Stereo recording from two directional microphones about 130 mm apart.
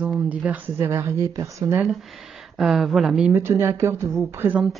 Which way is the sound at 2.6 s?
Centre (ahead or behind).